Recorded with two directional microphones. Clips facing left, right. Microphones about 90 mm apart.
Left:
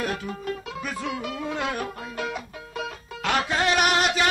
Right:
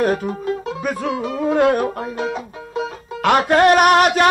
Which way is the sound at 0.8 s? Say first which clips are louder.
Right 8 dB; 45° right (ahead or behind).